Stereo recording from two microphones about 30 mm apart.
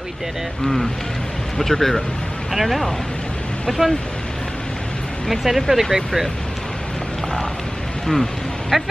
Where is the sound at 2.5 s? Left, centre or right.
Centre.